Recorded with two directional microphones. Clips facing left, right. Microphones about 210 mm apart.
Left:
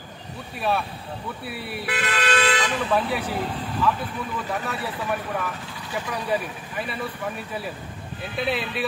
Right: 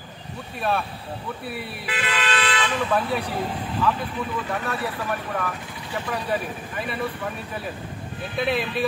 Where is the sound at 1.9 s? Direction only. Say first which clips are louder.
Left 2 dB; 45° left (ahead or behind).